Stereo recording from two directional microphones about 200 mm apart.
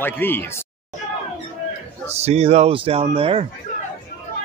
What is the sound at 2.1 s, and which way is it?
Speech, 30° right (ahead or behind).